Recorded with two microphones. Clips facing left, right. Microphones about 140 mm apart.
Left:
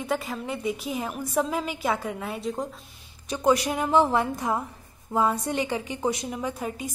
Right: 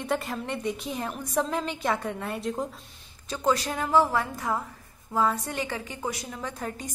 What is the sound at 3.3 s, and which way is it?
A woman's voice, 15° left (ahead or behind).